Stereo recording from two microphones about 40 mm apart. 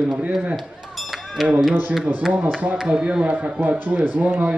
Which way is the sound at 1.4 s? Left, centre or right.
Centre.